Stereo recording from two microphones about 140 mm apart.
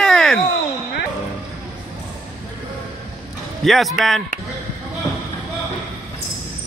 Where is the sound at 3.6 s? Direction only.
Centre (ahead or behind).